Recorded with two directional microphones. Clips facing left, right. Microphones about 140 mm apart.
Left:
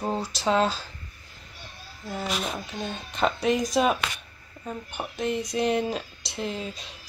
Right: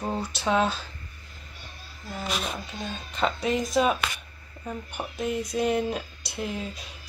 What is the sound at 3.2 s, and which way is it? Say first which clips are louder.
Speech: left 2 dB; centre (ahead or behind).